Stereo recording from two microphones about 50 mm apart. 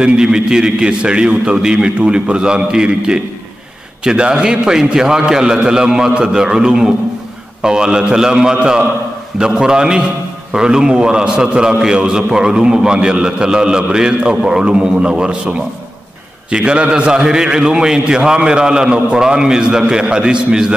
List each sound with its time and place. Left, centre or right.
0.0 s a man's voice: centre